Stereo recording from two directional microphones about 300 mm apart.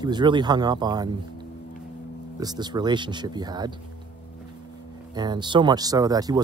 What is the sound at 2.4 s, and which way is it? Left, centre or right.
Speech, centre.